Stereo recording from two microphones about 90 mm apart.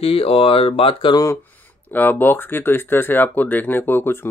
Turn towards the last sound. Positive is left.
turn(degrees=25)  # may be behind; listen again after turning